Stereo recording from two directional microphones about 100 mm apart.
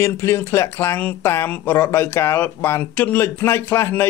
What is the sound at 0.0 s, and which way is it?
Speech, 25° left (ahead or behind).